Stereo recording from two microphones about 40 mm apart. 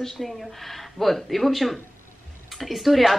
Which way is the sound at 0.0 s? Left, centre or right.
Centre.